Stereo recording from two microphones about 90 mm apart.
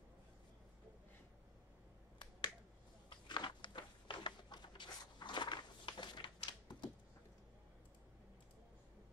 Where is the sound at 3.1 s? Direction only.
60° left (ahead or behind).